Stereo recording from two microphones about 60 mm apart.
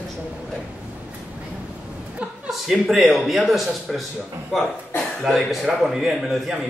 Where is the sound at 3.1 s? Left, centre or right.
Centre.